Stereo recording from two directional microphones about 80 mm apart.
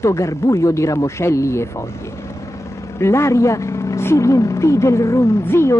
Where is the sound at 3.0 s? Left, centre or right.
Left.